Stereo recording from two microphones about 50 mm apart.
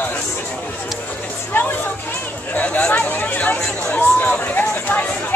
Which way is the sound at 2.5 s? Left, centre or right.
Left.